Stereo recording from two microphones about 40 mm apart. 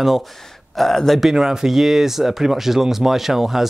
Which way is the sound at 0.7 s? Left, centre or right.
Centre.